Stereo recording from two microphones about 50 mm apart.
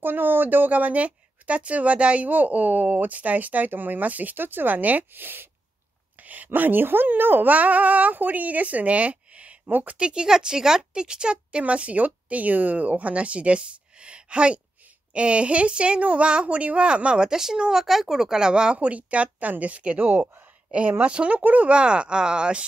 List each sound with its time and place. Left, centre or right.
0.0 s speech: right
9.7 s speech: right
9.9 s speech: centre
20.0 s speech: right
21.0 s speech: right